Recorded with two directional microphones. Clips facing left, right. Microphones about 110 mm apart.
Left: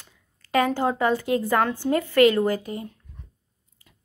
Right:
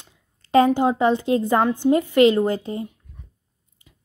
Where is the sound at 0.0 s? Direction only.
25° right (ahead or behind).